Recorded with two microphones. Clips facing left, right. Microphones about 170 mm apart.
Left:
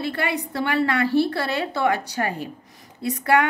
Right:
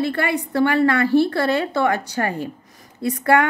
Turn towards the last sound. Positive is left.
turn(degrees=-50)  # may be behind; listen again after turning